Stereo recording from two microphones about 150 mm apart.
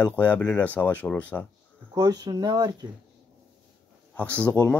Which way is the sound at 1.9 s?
25° right (ahead or behind).